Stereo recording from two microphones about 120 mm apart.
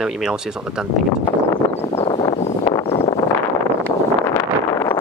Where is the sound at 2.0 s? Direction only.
45° left (ahead or behind).